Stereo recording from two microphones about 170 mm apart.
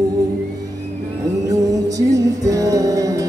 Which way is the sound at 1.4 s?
20° right (ahead or behind).